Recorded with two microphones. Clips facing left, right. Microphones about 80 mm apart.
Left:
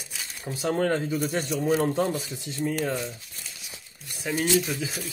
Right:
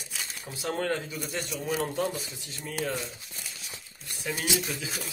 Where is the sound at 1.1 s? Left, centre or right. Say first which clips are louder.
Left 7 dB; left.